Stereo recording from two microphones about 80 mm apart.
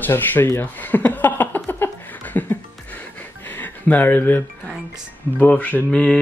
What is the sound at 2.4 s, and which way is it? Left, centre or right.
Music, left.